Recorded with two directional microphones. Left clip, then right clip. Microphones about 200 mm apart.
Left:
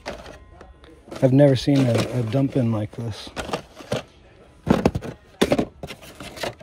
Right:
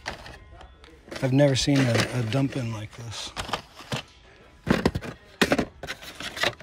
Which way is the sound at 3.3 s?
40° left (ahead or behind).